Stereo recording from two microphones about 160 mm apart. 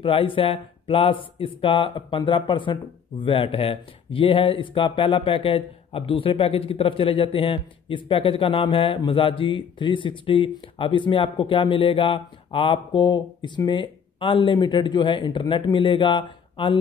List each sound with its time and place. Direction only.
0.0 s speech: 35° left (ahead or behind)